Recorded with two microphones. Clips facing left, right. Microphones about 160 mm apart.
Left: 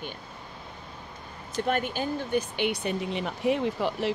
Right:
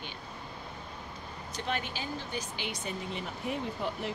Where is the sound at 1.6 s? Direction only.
50° left (ahead or behind).